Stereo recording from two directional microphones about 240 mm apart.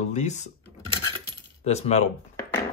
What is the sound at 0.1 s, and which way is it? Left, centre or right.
Speech, left.